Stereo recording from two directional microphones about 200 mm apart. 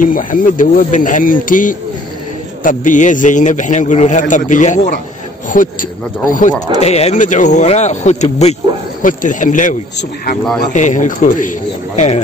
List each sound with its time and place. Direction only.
0.0 s a man's voice: 40° left (ahead or behind)